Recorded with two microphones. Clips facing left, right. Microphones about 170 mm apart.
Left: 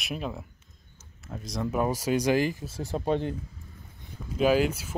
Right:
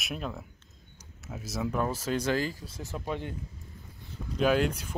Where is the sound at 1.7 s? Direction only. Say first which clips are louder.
Left 5 dB; 10° left (ahead or behind).